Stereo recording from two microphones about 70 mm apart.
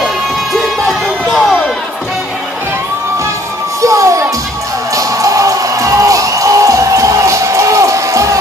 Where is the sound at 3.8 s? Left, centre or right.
Right.